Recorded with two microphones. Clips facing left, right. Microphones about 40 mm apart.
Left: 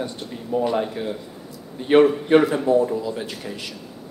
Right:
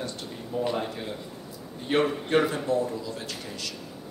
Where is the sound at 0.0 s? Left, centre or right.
Left.